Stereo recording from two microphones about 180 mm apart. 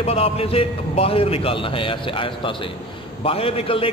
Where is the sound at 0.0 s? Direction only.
30° left (ahead or behind).